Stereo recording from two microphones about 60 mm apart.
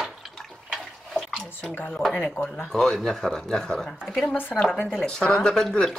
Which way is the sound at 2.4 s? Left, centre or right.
Left.